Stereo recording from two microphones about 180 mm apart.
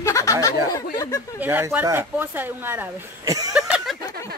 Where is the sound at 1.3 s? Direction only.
10° right (ahead or behind).